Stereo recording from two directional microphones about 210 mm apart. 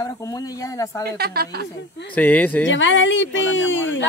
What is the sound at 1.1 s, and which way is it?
Speech, 50° right (ahead or behind).